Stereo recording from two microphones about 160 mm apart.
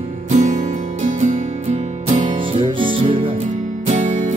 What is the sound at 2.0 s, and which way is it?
Music, 35° right (ahead or behind).